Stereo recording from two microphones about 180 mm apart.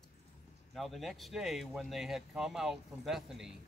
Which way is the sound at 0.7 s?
Centre (ahead or behind).